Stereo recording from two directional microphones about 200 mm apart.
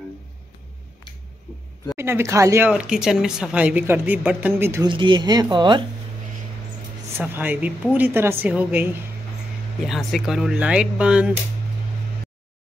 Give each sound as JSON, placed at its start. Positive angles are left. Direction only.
{"t": 2.0, "sound": "speech", "side_deg": -10}
{"t": 4.8, "sound": "speech", "side_deg": -25}
{"t": 7.2, "sound": "speech", "side_deg": -10}